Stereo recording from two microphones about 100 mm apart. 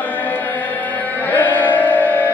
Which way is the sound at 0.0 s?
15° left (ahead or behind).